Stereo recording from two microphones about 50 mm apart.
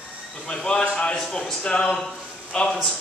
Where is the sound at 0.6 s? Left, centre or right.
Centre.